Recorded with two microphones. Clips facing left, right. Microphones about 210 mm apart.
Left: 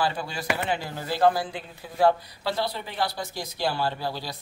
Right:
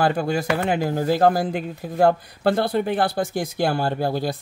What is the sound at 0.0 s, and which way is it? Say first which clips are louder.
Speech: right 8 dB; 50° right (ahead or behind).